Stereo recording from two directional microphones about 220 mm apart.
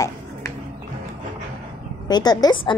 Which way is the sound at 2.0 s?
20° left (ahead or behind).